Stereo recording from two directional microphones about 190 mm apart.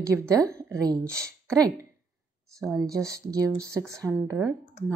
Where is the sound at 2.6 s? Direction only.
15° right (ahead or behind).